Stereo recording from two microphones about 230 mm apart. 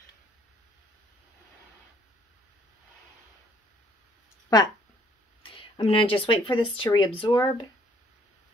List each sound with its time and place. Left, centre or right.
5.4 s speech: left